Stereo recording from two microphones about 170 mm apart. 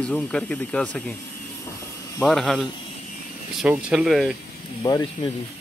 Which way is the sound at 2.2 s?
5° left (ahead or behind).